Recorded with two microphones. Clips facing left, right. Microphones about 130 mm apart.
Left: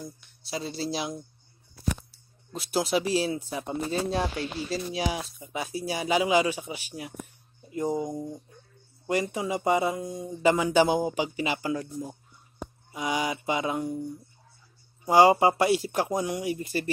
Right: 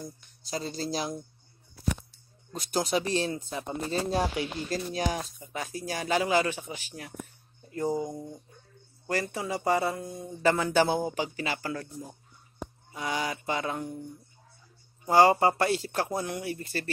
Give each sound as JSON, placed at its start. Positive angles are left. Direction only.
{"t": 0.0, "sound": "speech", "side_deg": 5}
{"t": 2.5, "sound": "speech", "side_deg": 5}
{"t": 4.1, "sound": "speech", "side_deg": -5}
{"t": 15.0, "sound": "speech", "side_deg": 15}